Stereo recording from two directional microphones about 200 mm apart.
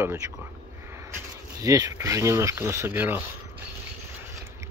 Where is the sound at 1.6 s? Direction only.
15° right (ahead or behind).